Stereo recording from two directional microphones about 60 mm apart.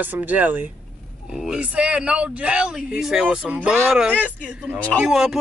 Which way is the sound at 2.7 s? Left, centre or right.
Centre.